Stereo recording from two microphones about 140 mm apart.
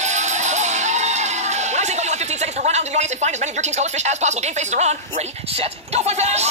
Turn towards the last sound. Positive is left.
turn(degrees=-50)  # may be behind; listen again after turning